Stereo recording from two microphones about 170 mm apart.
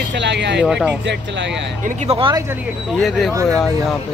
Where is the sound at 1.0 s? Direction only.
90° right.